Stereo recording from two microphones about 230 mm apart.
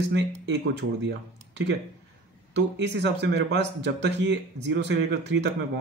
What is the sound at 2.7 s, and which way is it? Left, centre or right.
Speech, right.